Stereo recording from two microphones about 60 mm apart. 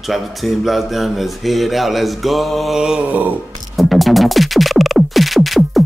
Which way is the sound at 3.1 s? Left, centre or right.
Right.